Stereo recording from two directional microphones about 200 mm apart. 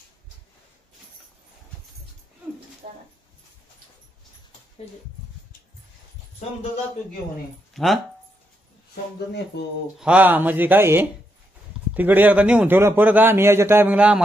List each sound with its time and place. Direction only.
2.8 s a sound: 40° right (ahead or behind)
7.7 s speech: centre (ahead or behind)
9.5 s speech: 55° left (ahead or behind)
9.9 s a man's voice: 5° right (ahead or behind)